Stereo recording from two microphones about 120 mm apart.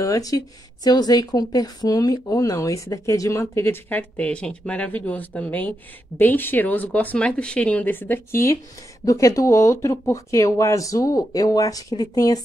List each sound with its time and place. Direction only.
0.0 s speech: 30° left (ahead or behind)